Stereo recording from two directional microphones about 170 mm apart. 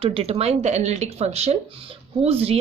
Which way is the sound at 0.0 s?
35° right (ahead or behind).